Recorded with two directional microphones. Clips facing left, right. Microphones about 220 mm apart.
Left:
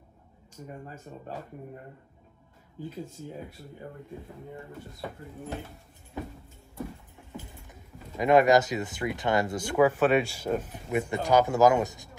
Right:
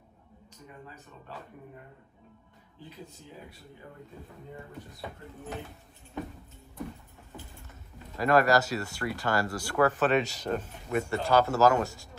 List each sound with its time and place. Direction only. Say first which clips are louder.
0.7 s speech: left 6 dB; 45° left (ahead or behind)
8.2 s speech: left 3 dB; 20° left (ahead or behind)